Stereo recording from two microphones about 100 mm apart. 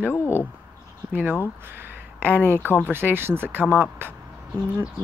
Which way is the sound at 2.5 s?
15° left (ahead or behind).